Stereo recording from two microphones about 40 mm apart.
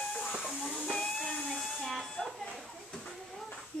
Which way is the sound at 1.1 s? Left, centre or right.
Centre.